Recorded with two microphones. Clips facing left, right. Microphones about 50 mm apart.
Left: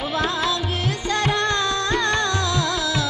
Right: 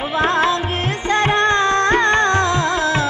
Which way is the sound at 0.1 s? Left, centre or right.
Right.